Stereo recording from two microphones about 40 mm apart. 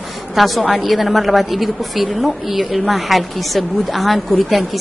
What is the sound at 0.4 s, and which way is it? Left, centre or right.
A woman's voice, centre.